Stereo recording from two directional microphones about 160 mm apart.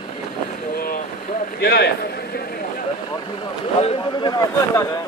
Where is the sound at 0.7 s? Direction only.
65° left (ahead or behind).